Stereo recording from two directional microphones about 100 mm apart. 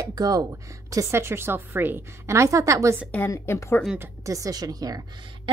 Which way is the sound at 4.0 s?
35° right (ahead or behind).